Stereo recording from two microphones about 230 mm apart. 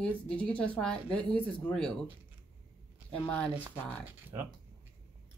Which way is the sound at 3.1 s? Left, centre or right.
Centre.